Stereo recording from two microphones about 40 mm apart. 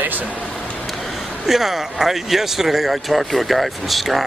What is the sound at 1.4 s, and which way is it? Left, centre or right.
Speech, centre.